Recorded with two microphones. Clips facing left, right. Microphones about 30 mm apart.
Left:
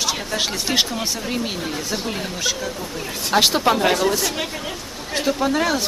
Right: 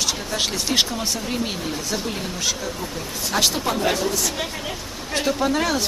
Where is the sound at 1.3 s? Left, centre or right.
Centre.